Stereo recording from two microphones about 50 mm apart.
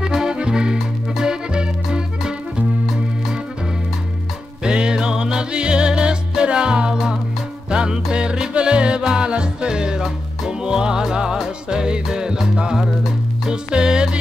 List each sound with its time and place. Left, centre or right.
0.0 s music: centre
4.6 s music: centre